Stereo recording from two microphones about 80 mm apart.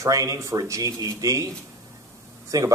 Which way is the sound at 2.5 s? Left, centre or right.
Right.